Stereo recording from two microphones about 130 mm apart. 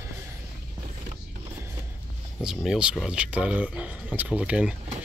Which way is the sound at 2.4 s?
5° right (ahead or behind).